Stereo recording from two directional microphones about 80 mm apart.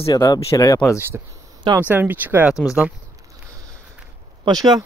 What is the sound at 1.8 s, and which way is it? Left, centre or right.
Speech, right.